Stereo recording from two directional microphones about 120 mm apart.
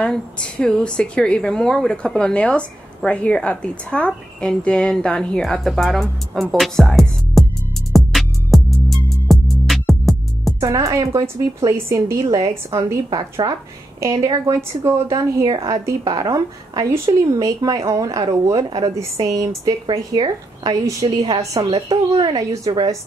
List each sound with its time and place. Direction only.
0.0 s a woman's voice: 10° left (ahead or behind)
6.6 s music: centre (ahead or behind)
10.6 s speech: 25° right (ahead or behind)
21.5 s speech: 55° right (ahead or behind)
21.8 s speech: 40° right (ahead or behind)